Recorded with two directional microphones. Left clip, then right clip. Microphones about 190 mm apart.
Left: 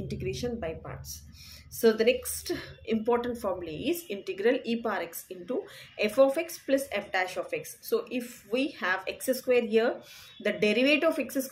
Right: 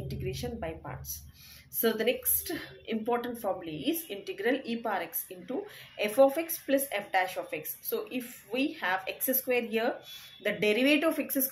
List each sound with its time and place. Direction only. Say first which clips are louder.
0.1 s a woman's voice: left 4 dB; 20° left (ahead or behind)